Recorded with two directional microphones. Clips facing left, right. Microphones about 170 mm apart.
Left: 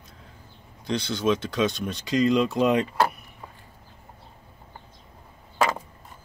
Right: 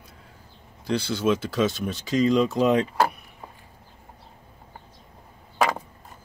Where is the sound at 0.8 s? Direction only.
5° right (ahead or behind).